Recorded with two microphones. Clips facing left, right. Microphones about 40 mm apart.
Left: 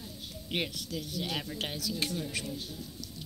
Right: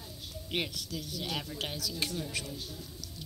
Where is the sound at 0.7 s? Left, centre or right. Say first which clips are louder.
Left 2 dB; left.